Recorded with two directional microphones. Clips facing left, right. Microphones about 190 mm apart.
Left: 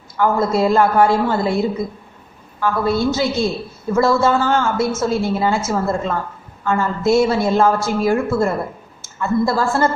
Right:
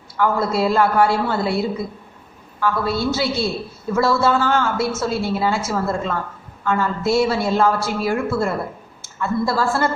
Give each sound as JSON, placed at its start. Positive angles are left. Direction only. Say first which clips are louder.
{"t": 0.2, "sound": "a woman's voice", "louder": "left 3 dB", "side_deg": 45}